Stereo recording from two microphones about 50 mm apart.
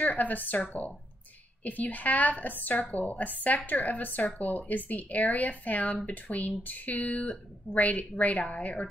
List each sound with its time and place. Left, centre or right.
0.0 s a woman's voice: left